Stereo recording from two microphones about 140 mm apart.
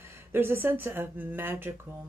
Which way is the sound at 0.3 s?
15° right (ahead or behind).